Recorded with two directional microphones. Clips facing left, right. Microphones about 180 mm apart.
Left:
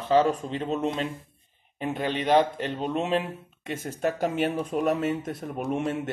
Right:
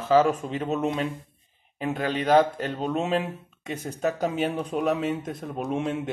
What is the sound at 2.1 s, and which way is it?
Speech, 40° right (ahead or behind).